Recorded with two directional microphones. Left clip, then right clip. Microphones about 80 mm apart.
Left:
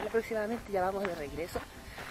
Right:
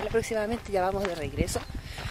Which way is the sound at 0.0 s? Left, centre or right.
Right.